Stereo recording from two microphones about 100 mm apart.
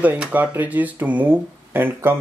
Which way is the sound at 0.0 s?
15° right (ahead or behind).